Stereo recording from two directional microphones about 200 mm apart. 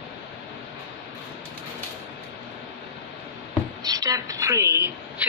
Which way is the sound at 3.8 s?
20° right (ahead or behind).